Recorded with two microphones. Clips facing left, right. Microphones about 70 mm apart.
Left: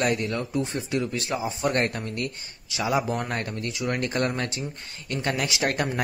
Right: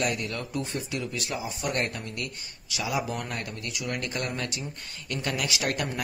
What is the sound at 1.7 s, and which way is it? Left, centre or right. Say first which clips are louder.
A man's voice: left 5 dB; left.